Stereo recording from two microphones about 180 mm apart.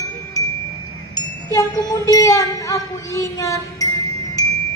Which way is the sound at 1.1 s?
20° left (ahead or behind).